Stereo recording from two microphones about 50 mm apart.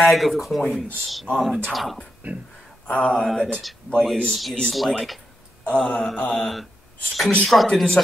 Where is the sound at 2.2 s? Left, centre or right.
Right.